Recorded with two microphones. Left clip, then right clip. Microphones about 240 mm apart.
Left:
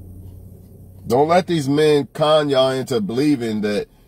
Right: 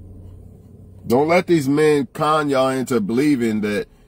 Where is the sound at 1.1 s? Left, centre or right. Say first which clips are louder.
Even; centre.